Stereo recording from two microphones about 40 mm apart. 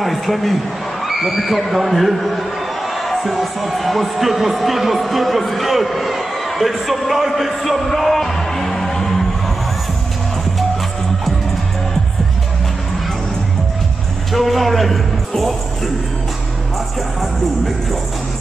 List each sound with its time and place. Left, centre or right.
0.0 s speech: centre
14.3 s a man's voice: centre